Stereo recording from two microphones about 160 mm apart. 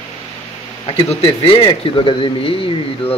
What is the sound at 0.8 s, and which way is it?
Speech, 35° left (ahead or behind).